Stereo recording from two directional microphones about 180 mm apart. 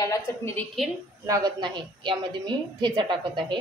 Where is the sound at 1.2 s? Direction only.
20° right (ahead or behind).